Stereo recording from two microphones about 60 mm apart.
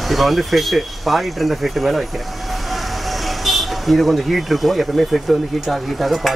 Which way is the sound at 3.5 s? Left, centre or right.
Centre.